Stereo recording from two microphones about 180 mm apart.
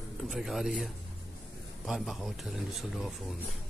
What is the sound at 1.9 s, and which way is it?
Speech, centre (ahead or behind).